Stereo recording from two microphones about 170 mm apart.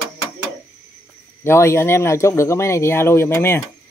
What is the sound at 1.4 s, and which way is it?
Speech, 15° left (ahead or behind).